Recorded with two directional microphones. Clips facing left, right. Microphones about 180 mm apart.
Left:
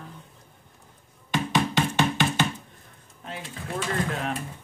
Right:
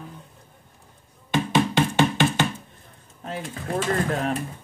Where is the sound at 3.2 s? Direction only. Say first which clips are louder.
Right 5 dB; 45° right (ahead or behind).